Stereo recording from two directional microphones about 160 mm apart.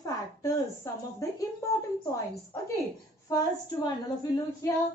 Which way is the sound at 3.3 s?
20° left (ahead or behind).